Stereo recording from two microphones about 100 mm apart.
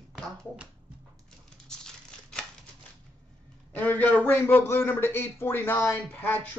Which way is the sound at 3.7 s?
15° left (ahead or behind).